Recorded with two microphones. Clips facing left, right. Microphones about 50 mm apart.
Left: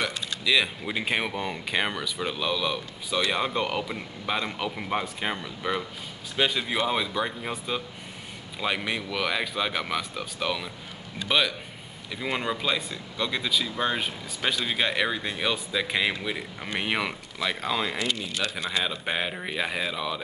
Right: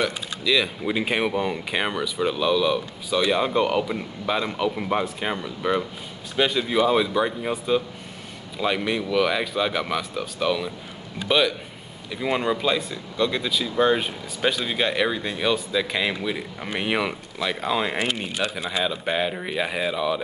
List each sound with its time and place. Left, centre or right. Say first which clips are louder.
0.0 s speech: right 4 dB; centre
0.8 s speech: right 5 dB; centre
17.8 s a man's voice: right 4 dB; right
18.9 s speech: right 5 dB; centre